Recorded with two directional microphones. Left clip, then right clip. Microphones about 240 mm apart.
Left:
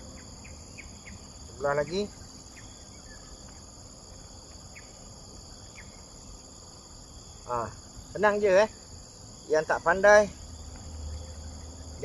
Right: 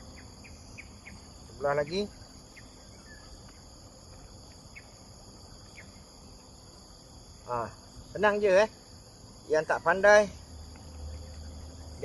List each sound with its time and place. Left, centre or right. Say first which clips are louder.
1.6 s speech: left 1 dB; centre
7.4 s speech: left 2 dB; centre